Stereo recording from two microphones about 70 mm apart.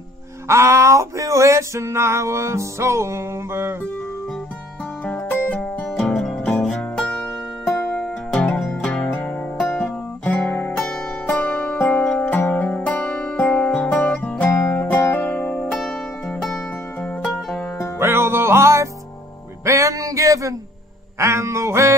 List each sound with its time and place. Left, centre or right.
0.5 s male singing: right
5.0 s music: left
5.5 s music: centre
5.9 s music: centre
6.8 s music: centre
7.6 s music: centre
8.3 s music: centre
9.0 s music: left
11.2 s music: centre
13.0 s music: centre
13.4 s music: left
14.6 s music: left
15.7 s music: centre
17.9 s music: right